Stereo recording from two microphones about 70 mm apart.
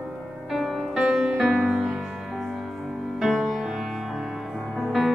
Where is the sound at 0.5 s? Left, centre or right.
Centre.